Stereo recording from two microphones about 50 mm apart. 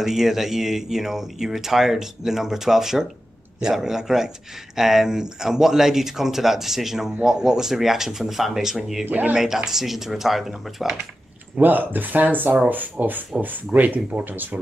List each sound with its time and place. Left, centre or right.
0.0 s speech: centre
9.0 s speech: right
9.3 s speech: centre
11.5 s speech: right